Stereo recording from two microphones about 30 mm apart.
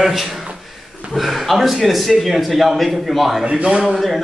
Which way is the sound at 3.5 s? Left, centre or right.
Right.